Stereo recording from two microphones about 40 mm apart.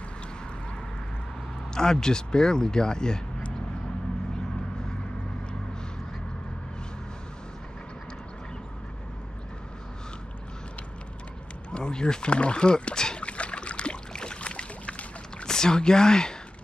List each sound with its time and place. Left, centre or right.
1.7 s speech: centre
11.7 s speech: left
13.2 s boat: left
15.4 s speech: centre